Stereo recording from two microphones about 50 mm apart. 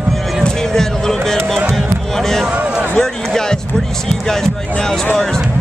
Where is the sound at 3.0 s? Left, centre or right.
Centre.